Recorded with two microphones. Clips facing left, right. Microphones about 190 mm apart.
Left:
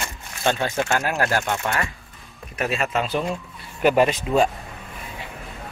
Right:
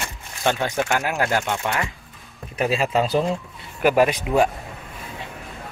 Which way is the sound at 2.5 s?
30° right (ahead or behind).